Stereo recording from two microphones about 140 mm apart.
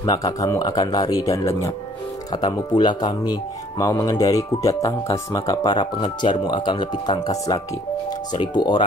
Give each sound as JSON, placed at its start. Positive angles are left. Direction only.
{"t": 0.0, "sound": "speech", "side_deg": 30}
{"t": 2.4, "sound": "speech", "side_deg": 30}